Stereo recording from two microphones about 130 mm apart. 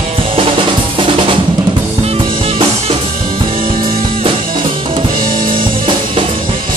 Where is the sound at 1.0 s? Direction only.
40° right (ahead or behind).